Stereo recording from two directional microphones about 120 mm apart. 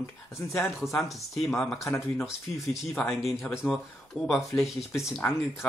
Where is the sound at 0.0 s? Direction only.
20° left (ahead or behind).